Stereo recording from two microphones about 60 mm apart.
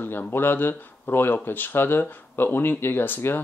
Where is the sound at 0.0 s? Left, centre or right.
Left.